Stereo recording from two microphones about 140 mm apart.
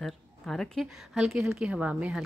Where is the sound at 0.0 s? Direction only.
Centre (ahead or behind).